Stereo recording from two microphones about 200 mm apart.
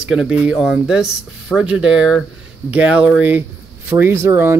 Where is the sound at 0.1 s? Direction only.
Centre (ahead or behind).